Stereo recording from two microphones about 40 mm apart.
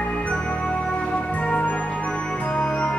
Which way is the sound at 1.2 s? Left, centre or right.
Left.